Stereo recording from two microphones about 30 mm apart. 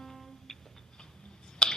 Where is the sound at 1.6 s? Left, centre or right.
Left.